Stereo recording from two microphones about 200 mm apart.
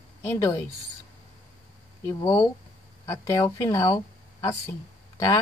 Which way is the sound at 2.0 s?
20° left (ahead or behind).